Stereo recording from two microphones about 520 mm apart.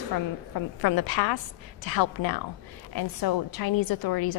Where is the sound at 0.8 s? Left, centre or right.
Left.